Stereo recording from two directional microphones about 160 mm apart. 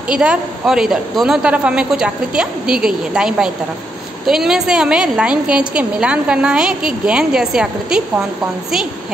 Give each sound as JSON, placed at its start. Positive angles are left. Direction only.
{"t": 0.1, "sound": "a woman's voice", "side_deg": -5}